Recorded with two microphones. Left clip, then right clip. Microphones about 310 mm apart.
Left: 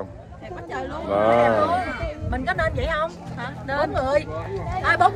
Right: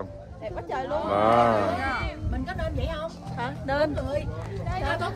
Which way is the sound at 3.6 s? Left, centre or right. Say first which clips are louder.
Left 1 dB; right.